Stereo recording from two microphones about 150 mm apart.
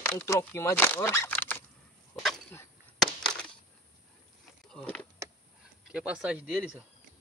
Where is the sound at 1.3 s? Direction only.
10° left (ahead or behind).